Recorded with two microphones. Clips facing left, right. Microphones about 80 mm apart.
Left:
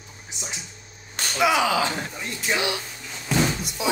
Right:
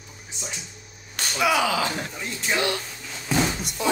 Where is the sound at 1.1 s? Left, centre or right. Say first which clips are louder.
Left 1 dB; left.